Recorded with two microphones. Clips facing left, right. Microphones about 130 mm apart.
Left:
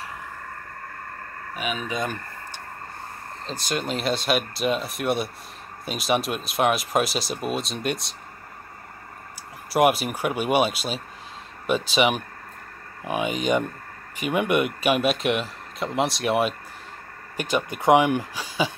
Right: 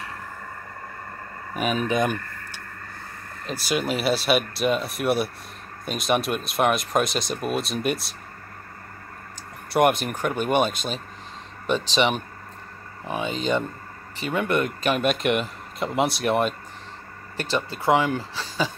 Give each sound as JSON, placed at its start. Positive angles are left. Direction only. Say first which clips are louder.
{"t": 1.9, "sound": "speech", "louder": "right 5 dB", "side_deg": -15}
{"t": 3.5, "sound": "speech", "louder": "right 3 dB", "side_deg": -5}
{"t": 9.7, "sound": "speech", "louder": "even", "side_deg": 5}
{"t": 17.4, "sound": "speech", "louder": "left 1 dB", "side_deg": 15}